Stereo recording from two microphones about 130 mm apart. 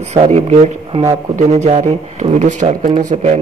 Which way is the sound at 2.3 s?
65° right (ahead or behind).